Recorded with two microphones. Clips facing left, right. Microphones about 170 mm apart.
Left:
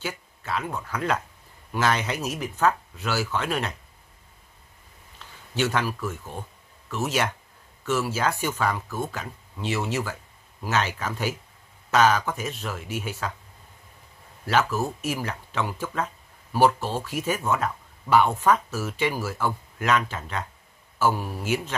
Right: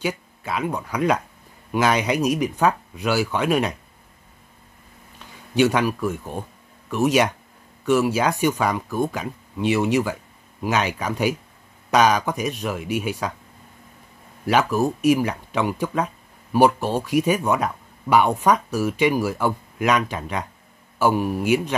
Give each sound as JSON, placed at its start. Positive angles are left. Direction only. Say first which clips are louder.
{"t": 0.0, "sound": "speech", "louder": "right 7 dB", "side_deg": -15}
{"t": 5.2, "sound": "a man's voice", "louder": "right 8 dB", "side_deg": -15}
{"t": 14.4, "sound": "speech", "louder": "right 5 dB", "side_deg": -15}